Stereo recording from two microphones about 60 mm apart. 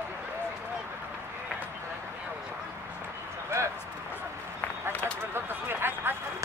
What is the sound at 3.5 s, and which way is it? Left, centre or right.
Bow-wow, right.